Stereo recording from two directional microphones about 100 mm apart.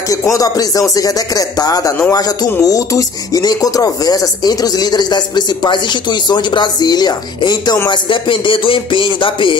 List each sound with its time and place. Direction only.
0.1 s speech: 35° left (ahead or behind)
7.9 s music: 55° left (ahead or behind)